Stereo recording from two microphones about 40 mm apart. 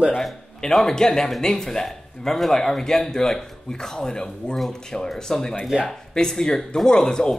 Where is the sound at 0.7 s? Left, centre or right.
Centre.